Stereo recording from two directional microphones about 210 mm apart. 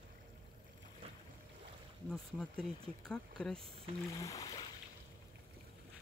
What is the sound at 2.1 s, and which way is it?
Speech, 5° left (ahead or behind).